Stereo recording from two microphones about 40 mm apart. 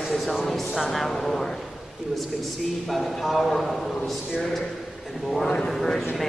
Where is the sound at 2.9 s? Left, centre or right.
Centre.